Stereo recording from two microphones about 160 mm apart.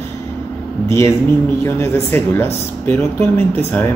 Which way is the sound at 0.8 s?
15° left (ahead or behind).